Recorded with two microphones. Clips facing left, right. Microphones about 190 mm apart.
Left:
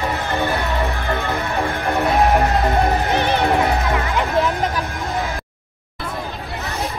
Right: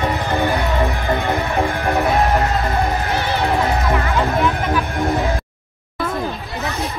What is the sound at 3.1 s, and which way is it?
Music, 20° left (ahead or behind).